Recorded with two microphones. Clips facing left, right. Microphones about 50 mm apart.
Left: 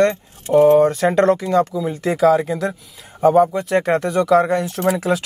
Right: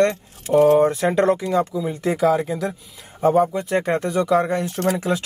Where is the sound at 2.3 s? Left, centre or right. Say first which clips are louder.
Left 3 dB; centre.